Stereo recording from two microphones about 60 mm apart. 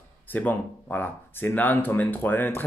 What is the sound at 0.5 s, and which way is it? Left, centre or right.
Speech, left.